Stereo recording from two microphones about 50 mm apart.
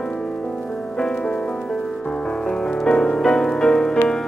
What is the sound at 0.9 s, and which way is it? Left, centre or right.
Music, centre.